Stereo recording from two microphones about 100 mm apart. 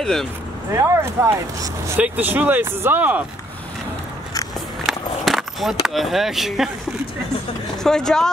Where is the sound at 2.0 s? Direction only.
15° right (ahead or behind).